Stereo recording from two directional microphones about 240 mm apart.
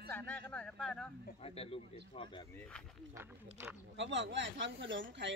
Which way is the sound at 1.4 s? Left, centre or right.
Left.